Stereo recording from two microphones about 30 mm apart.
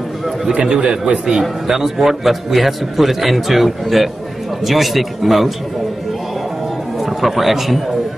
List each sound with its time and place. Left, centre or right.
0.5 s a man's voice: right
1.7 s a man's voice: centre
7.0 s a man's voice: centre